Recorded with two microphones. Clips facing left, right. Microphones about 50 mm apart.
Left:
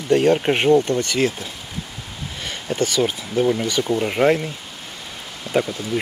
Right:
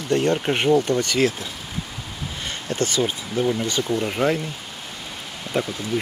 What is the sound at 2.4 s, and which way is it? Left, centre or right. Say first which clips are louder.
Speech: left 2 dB; centre.